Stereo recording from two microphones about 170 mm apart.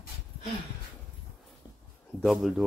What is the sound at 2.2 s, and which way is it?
Speech, centre (ahead or behind).